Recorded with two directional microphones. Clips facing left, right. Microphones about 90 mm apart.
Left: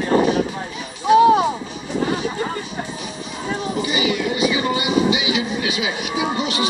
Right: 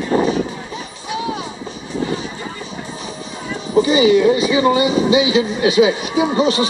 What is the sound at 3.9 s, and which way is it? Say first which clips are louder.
Speech: right 11 dB; 35° right (ahead or behind).